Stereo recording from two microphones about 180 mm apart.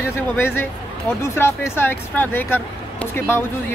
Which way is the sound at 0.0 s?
10° left (ahead or behind).